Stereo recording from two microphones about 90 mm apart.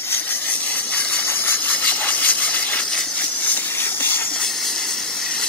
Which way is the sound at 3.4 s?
20° left (ahead or behind).